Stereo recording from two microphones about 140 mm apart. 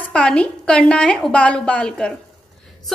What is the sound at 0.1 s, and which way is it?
A woman's voice, 5° left (ahead or behind).